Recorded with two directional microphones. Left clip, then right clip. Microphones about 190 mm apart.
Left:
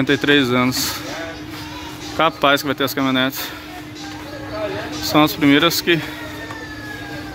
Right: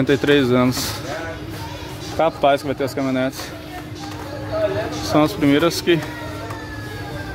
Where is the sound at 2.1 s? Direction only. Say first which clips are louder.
Left 1 dB; 5° left (ahead or behind).